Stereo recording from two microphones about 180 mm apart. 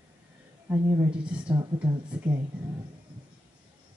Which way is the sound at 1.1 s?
5° right (ahead or behind).